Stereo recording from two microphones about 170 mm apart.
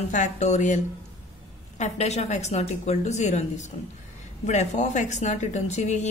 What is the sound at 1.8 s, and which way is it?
A woman's voice, 40° left (ahead or behind).